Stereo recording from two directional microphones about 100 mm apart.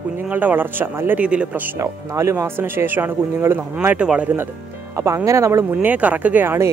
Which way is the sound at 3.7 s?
10° right (ahead or behind).